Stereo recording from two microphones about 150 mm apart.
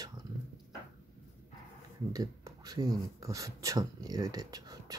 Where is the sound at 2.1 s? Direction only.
25° right (ahead or behind).